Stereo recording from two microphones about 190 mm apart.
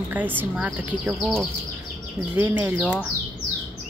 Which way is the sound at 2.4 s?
15° right (ahead or behind).